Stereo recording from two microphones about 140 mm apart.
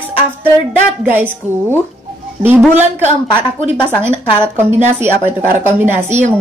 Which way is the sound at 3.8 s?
15° right (ahead or behind).